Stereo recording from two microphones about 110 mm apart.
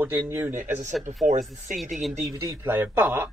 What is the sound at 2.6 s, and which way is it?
Speech, 20° right (ahead or behind).